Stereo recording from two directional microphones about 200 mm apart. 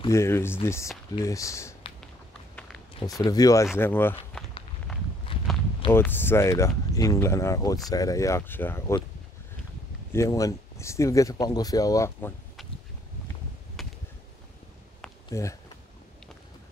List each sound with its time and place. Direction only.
0.1 s speech: 10° left (ahead or behind)
2.9 s speech: 20° left (ahead or behind)
4.9 s walk: centre (ahead or behind)
5.3 s walk: 25° left (ahead or behind)
5.9 s speech: 10° left (ahead or behind)
10.1 s speech: 15° left (ahead or behind)
13.8 s a sound: centre (ahead or behind)
15.2 s speech: 15° left (ahead or behind)